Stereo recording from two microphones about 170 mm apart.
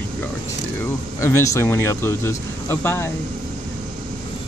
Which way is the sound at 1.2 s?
15° left (ahead or behind).